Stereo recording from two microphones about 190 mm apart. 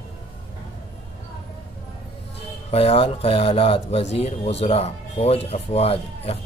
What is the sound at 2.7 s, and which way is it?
Speech, 30° left (ahead or behind).